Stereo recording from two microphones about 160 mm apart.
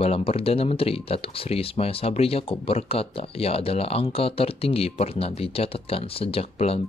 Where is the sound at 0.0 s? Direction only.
40° left (ahead or behind).